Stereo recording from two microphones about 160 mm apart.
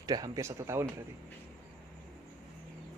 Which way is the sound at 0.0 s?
25° right (ahead or behind).